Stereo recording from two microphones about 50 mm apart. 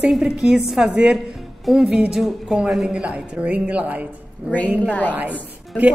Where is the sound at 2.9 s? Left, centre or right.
Right.